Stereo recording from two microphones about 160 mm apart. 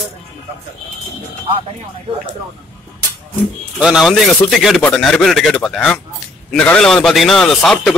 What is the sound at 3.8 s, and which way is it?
A man's voice, 5° right (ahead or behind).